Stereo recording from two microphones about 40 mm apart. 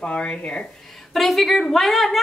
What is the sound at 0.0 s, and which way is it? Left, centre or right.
Speech, left.